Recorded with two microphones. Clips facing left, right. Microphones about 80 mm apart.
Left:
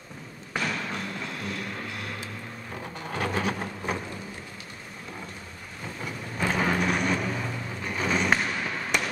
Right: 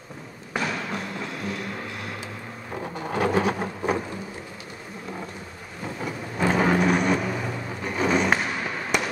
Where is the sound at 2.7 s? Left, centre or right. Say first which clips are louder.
Right 6 dB; right.